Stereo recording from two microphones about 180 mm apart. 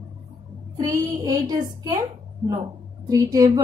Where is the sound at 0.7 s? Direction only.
20° right (ahead or behind).